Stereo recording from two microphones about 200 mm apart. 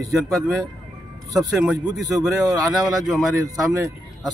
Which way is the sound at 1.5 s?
5° right (ahead or behind).